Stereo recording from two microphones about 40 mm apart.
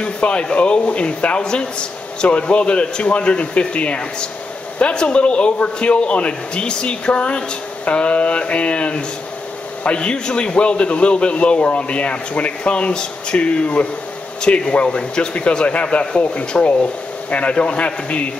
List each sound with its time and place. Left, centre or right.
0.0 s a man's voice: left